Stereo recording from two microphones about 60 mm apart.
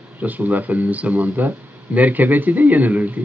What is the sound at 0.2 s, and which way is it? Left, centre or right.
Speech, right.